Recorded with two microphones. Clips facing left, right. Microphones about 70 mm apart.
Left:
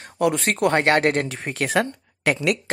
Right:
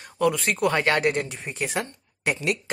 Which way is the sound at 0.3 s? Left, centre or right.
Left.